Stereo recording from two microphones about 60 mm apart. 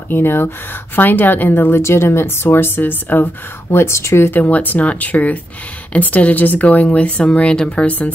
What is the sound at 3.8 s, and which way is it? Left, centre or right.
Speech, left.